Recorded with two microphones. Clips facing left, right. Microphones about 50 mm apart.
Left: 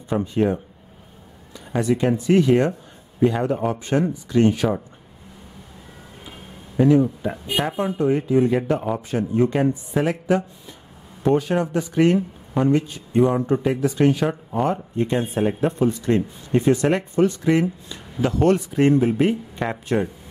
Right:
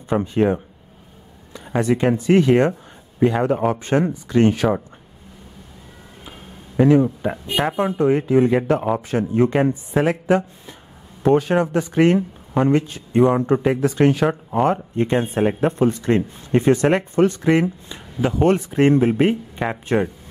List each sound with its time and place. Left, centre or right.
0.1 s speech: right
6.8 s speech: right
9.6 s speech: right
11.2 s speech: right
18.2 s speech: right
19.5 s speech: centre